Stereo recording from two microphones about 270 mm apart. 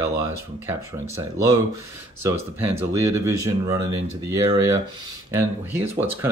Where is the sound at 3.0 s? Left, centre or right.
Centre.